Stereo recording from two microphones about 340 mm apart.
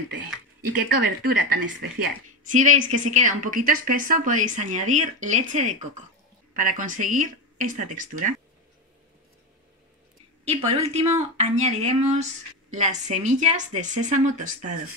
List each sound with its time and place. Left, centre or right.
0.7 s speech: right
2.5 s a woman's voice: right
10.4 s a woman's voice: centre